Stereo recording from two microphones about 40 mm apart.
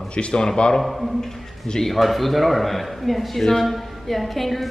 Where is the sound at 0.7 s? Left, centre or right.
Centre.